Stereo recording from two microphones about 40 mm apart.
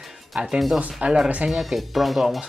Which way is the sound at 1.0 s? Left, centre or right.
Right.